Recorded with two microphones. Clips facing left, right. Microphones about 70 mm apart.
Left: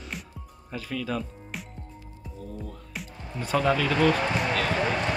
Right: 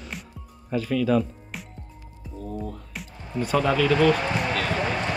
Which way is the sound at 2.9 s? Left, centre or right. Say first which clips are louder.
Even; centre.